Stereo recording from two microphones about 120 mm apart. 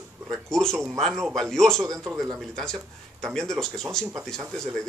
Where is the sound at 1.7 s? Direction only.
25° right (ahead or behind).